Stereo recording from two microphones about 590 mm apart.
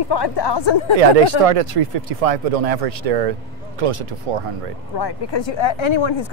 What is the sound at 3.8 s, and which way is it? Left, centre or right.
Speech, right.